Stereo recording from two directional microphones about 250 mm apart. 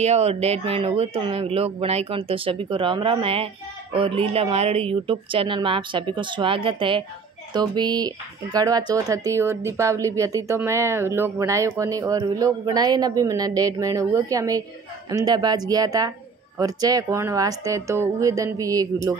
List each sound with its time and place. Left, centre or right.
0.0 s speech: right